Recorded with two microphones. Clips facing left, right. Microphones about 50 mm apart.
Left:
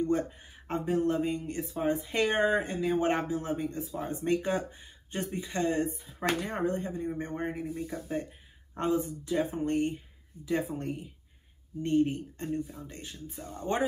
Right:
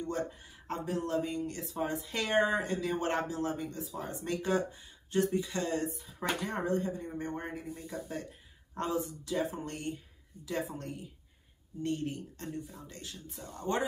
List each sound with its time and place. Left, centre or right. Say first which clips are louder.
0.7 s speech: left 6 dB; left